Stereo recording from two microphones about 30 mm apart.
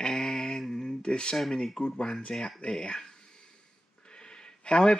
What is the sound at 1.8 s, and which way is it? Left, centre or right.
Speech, left.